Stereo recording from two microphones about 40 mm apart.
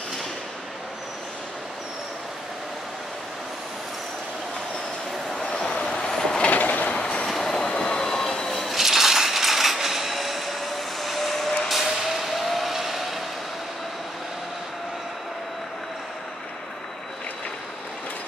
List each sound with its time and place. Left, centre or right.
5.3 s vehicle: centre
6.4 s train: left
7.0 s train: left
7.2 s train: centre
7.6 s train: left
8.0 s train: centre
8.7 s coin: centre
11.0 s vehicle: centre
11.7 s vehicle: centre